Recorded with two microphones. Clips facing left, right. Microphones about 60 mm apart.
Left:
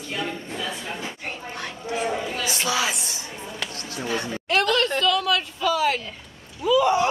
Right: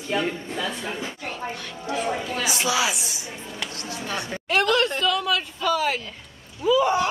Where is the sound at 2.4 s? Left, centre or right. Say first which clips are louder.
Right 3 dB; centre.